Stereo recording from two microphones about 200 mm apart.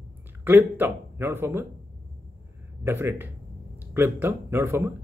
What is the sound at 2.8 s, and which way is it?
Speech, 10° right (ahead or behind).